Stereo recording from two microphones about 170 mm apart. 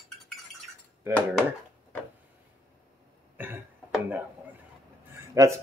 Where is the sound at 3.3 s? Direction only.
10° right (ahead or behind).